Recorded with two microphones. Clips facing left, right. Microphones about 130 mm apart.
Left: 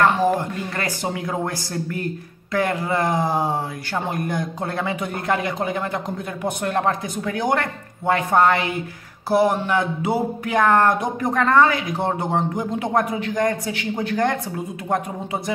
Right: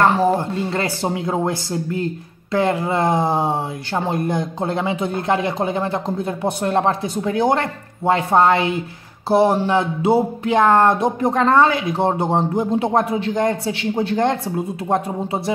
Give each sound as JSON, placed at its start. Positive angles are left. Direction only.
{"t": 0.0, "sound": "speech", "side_deg": -30}